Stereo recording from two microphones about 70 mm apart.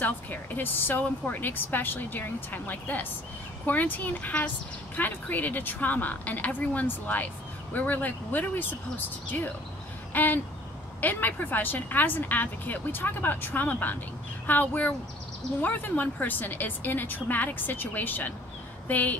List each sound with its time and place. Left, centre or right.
0.0 s a woman's voice: left